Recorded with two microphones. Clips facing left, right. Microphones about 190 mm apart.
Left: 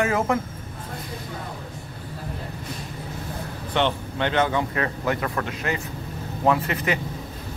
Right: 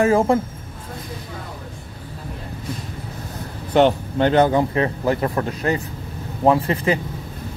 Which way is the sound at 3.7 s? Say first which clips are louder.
Right 8 dB; 40° right (ahead or behind).